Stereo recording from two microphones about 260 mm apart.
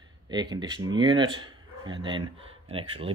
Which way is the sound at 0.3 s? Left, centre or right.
Centre.